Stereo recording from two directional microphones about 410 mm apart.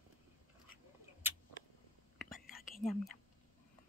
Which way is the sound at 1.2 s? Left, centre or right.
Centre.